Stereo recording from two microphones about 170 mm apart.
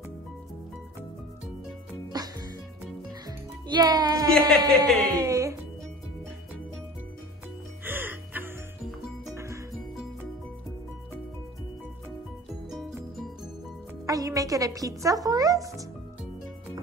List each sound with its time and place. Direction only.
1.9 s music: 20° right (ahead or behind)
4.4 s speech: centre (ahead or behind)
5.1 s music: 20° right (ahead or behind)
7.8 s music: 10° right (ahead or behind)
12.6 s music: centre (ahead or behind)
14.0 s music: 20° right (ahead or behind)